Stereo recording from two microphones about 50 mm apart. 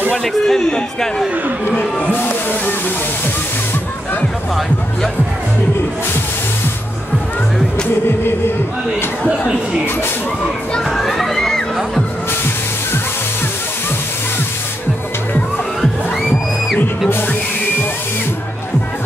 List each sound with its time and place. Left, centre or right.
0.1 s a man's voice: centre
0.6 s crowd: centre
2.1 s speech: left
10.8 s crowd: centre